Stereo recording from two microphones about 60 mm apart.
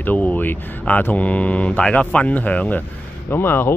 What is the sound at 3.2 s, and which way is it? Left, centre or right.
Speech, left.